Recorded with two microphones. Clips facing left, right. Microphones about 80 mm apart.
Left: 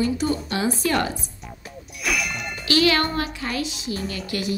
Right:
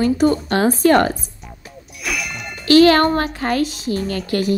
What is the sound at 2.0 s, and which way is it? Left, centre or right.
Clang, centre.